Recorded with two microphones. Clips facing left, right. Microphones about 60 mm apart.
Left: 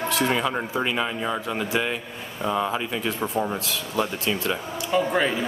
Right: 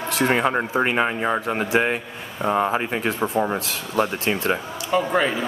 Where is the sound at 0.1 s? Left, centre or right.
Right.